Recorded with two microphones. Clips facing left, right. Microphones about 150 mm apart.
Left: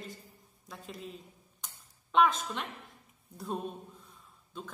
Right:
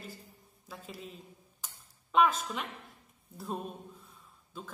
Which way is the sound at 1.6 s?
5° right (ahead or behind).